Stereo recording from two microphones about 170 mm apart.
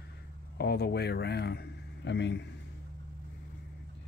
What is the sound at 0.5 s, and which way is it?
A man's voice, 70° left (ahead or behind).